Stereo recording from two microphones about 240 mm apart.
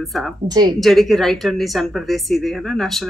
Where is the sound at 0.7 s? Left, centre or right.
Centre.